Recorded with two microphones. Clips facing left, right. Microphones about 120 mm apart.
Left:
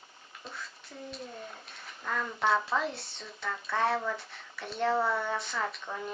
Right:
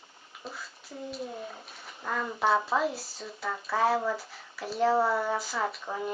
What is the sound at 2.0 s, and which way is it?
Speech, 10° right (ahead or behind).